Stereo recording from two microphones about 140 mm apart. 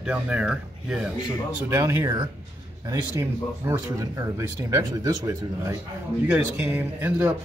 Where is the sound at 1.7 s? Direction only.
20° right (ahead or behind).